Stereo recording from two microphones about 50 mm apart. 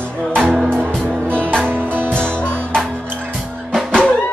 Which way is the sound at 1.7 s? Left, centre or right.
Right.